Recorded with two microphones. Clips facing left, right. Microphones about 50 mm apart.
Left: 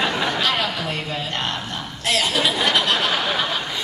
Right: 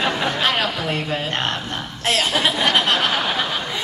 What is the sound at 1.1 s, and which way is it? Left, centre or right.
A woman's voice, right.